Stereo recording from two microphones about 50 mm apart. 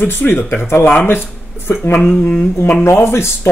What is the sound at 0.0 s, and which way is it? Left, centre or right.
Speech, left.